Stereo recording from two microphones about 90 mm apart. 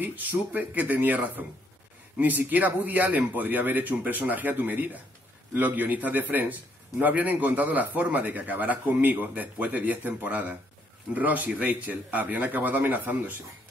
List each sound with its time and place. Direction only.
0.0 s a man's voice: 20° right (ahead or behind)